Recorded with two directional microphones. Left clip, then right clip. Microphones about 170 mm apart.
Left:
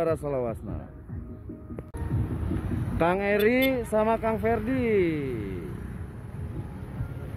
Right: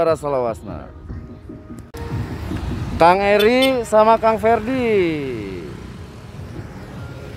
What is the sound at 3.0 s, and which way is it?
Speech, 20° right (ahead or behind).